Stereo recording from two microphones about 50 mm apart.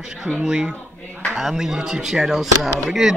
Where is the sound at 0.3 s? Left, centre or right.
Centre.